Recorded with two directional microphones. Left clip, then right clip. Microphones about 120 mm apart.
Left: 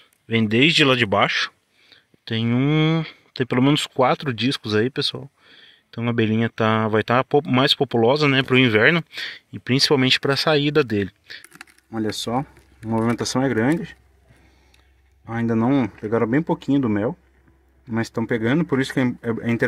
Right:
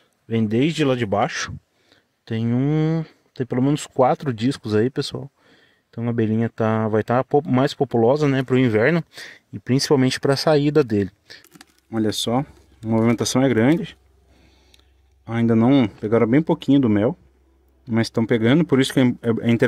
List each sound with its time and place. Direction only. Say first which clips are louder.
0.3 s speech: left 4 dB; 15° right (ahead or behind)
2.2 s speech: left 2 dB; 20° right (ahead or behind)
2.5 s speech: left 2 dB; 10° right (ahead or behind)
3.7 s speech: even; 25° right (ahead or behind)
5.4 s a sound: left 6 dB; 30° right (ahead or behind)
5.9 s speech: left 1 dB; 15° right (ahead or behind)
7.0 s speech: right 1 dB; 20° right (ahead or behind)
9.9 s speech: left 1 dB; 35° right (ahead or behind)
15.2 s speech: right 3 dB; 35° right (ahead or behind)